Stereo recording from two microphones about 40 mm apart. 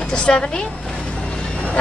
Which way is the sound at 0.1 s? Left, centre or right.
Left.